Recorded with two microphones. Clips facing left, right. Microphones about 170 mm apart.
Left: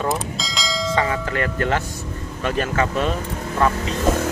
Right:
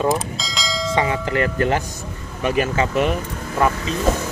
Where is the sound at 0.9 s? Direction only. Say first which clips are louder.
Right 2 dB; 20° right (ahead or behind).